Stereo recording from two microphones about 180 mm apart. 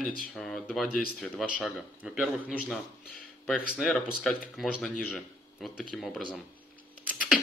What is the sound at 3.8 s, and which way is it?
A man's voice, 5° left (ahead or behind).